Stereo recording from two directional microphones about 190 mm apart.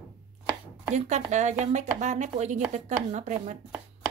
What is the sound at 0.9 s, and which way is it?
Speech, 40° right (ahead or behind).